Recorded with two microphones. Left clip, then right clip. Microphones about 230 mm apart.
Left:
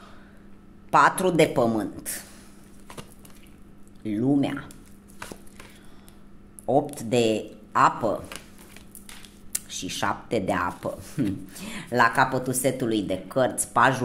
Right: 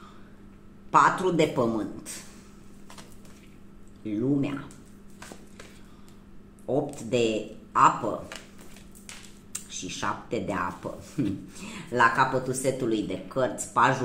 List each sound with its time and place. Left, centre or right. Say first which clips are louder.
0.8 s speech: left 2 dB; left
4.0 s speech: left 3 dB; left
6.7 s speech: left 4 dB; left
9.5 s speech: left 4 dB; left